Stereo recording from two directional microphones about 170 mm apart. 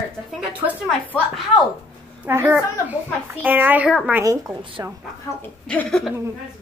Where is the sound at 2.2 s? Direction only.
10° right (ahead or behind).